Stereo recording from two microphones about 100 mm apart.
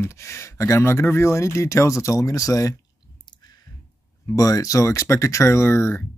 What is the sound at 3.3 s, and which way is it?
Clicking, 50° left (ahead or behind).